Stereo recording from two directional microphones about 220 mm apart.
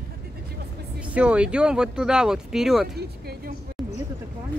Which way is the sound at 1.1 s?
5° right (ahead or behind).